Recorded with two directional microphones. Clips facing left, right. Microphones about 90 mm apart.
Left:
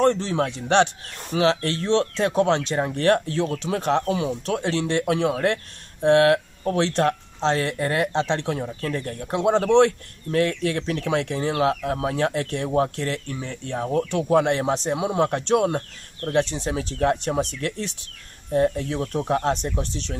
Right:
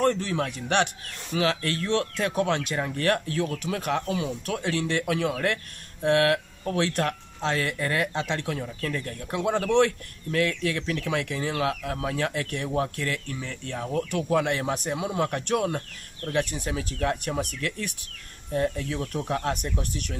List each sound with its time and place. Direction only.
0.0 s a man's voice: 25° left (ahead or behind)